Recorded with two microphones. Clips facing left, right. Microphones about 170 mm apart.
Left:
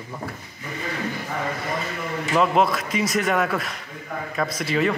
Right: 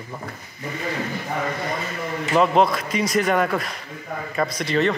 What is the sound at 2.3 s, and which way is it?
Speech, centre (ahead or behind).